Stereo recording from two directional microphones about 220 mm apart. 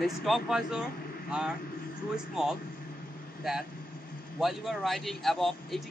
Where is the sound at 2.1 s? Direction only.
Centre (ahead or behind).